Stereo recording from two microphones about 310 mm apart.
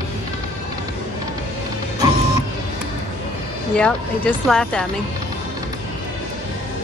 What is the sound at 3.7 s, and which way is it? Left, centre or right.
Speech, centre.